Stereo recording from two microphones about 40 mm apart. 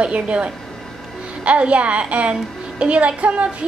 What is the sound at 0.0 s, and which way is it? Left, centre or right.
A woman's voice, right.